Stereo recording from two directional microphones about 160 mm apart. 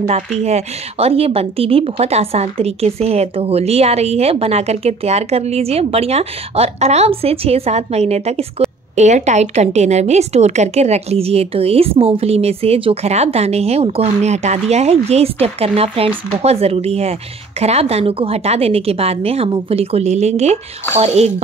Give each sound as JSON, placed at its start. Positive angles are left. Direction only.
{"t": 0.0, "sound": "speech", "side_deg": -45}